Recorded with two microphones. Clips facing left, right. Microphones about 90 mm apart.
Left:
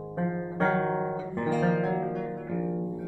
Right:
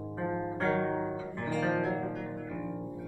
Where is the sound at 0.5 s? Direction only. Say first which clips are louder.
Left 5 dB; 20° left (ahead or behind).